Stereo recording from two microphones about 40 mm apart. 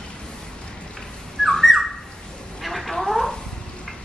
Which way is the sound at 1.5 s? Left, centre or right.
Centre.